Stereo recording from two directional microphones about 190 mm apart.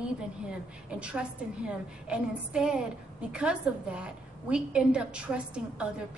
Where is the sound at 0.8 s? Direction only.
5° right (ahead or behind).